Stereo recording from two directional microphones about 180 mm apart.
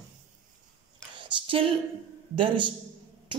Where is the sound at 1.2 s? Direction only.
30° right (ahead or behind).